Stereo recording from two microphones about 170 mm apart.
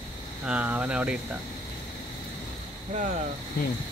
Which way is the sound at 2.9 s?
45° right (ahead or behind).